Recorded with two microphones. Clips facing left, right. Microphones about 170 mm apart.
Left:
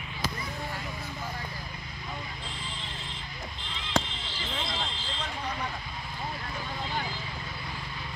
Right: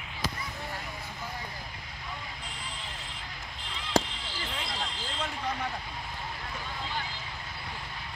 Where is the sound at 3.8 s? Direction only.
25° left (ahead or behind).